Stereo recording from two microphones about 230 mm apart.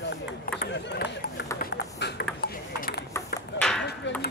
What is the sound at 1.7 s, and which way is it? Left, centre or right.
Ping, left.